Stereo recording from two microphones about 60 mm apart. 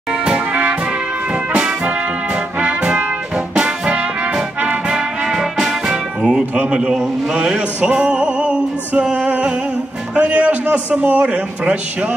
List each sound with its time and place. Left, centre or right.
0.1 s music: centre
2.6 s brass instrument: centre
3.5 s music: centre
6.5 s a man's voice: right
7.2 s music: centre
10.1 s a man's voice: right